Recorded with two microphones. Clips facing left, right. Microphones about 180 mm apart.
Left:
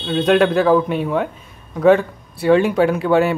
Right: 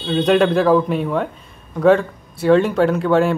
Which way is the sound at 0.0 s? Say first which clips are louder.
Even; centre (ahead or behind).